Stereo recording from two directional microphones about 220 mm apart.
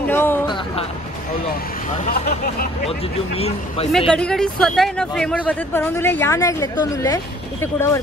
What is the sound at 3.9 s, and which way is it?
A woman's voice, 5° left (ahead or behind).